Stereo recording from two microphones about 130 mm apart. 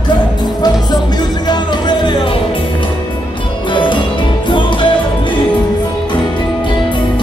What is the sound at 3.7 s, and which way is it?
Music, 40° left (ahead or behind).